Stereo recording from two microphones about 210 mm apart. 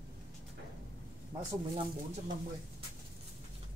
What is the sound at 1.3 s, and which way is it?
Speech, 20° right (ahead or behind).